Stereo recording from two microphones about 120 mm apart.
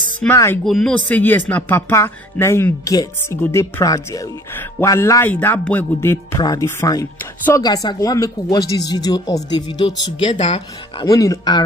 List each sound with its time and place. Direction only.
0.3 s speech: 20° left (ahead or behind)
0.7 s speech: centre (ahead or behind)
0.9 s music: 15° left (ahead or behind)
1.5 s speech: 20° left (ahead or behind)
5.3 s music: 15° left (ahead or behind)
6.4 s speech: 30° left (ahead or behind); by 11.1 s 50° left (ahead or behind)
11.1 s speech: 30° left (ahead or behind)